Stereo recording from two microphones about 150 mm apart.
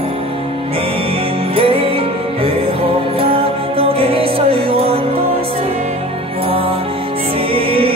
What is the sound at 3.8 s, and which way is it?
Music, 40° right (ahead or behind).